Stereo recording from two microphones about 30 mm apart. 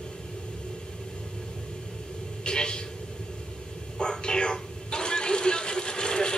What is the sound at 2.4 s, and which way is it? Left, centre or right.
Speech, left.